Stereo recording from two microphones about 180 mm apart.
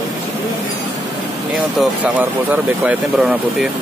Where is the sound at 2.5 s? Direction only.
5° right (ahead or behind).